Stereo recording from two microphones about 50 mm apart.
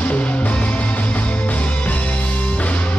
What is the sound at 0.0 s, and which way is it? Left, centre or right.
Music, left.